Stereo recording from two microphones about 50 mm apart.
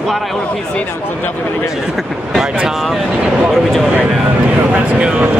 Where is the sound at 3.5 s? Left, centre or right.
Centre.